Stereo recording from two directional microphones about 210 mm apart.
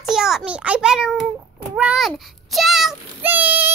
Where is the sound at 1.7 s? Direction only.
5° right (ahead or behind).